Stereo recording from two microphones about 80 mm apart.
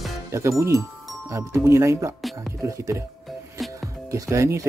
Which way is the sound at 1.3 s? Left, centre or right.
Right.